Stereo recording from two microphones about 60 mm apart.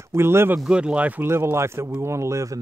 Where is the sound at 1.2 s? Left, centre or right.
Right.